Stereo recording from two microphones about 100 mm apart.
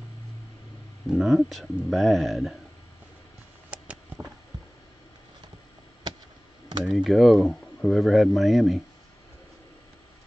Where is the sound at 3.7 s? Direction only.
10° right (ahead or behind).